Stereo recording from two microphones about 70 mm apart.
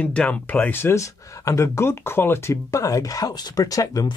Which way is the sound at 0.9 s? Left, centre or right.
Left.